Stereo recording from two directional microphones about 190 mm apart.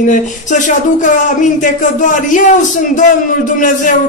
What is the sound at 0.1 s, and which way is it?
Speech, 40° left (ahead or behind).